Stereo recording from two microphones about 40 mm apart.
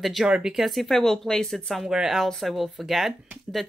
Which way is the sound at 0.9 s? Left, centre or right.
Centre.